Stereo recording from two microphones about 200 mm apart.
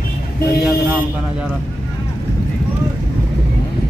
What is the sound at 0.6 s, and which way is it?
Speech, centre (ahead or behind).